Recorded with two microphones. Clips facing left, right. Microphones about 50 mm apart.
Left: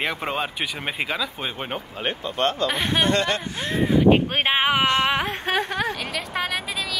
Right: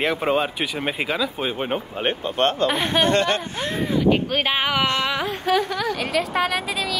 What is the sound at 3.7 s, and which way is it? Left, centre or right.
Speech, left.